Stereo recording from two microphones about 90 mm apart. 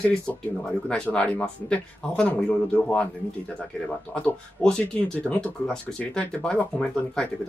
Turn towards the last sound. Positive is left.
turn(degrees=10)  # may be behind; listen again after turning